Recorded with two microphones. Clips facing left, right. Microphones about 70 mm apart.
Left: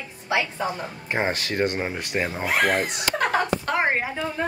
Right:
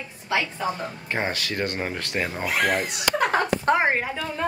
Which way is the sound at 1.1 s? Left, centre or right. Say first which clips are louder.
Left 3 dB; left.